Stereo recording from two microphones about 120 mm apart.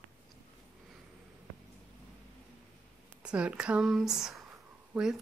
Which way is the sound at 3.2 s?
10° right (ahead or behind).